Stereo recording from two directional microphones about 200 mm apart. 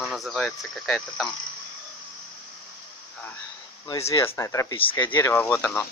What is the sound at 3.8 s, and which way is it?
Speech, 20° left (ahead or behind).